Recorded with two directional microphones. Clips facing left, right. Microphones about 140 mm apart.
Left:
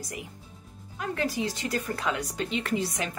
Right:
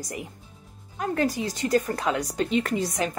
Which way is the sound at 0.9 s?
45° right (ahead or behind).